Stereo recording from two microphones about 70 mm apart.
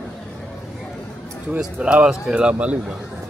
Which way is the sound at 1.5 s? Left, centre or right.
Centre.